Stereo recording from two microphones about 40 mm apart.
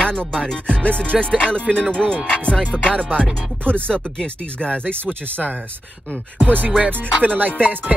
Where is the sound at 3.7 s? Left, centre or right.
Left.